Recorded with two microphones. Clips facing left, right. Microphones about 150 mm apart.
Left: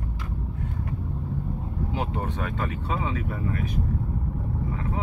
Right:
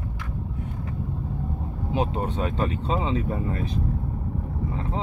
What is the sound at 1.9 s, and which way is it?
Speech, 20° right (ahead or behind).